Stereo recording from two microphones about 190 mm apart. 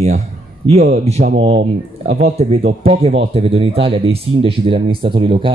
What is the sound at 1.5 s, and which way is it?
Speech, 65° right (ahead or behind).